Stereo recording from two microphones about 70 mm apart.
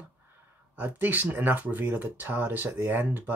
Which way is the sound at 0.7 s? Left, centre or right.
Right.